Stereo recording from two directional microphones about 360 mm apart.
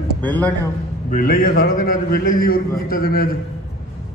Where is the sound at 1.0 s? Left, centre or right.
Left.